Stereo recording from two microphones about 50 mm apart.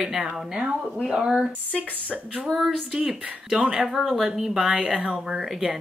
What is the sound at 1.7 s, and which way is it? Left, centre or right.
Speech, right.